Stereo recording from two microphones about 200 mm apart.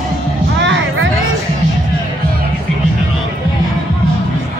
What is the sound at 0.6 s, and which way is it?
Music, 65° right (ahead or behind).